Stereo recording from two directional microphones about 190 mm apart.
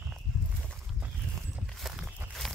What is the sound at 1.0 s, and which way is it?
Clip-clop, 5° right (ahead or behind).